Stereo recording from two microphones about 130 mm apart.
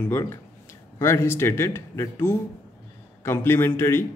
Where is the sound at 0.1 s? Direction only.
20° left (ahead or behind).